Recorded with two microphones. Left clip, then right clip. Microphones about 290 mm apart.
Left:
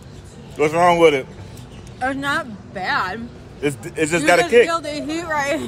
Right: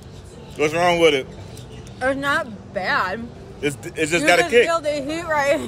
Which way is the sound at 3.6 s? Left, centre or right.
Left.